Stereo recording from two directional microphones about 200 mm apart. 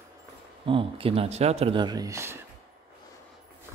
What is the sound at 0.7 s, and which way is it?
Speech, 25° right (ahead or behind).